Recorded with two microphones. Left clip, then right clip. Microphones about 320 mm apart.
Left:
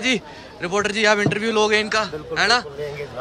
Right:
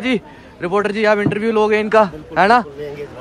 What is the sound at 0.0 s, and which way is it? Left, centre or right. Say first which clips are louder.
A man's voice: right 1 dB; centre.